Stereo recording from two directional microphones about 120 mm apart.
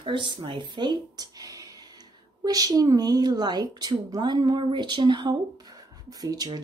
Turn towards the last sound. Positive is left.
turn(degrees=-30)  # may be behind; listen again after turning